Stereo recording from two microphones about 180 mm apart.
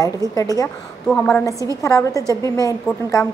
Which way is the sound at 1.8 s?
15° left (ahead or behind).